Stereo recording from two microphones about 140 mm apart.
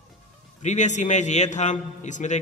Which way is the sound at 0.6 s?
55° left (ahead or behind).